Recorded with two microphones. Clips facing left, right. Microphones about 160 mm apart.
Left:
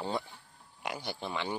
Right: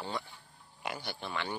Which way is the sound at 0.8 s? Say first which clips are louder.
Left 1 dB; 10° left (ahead or behind).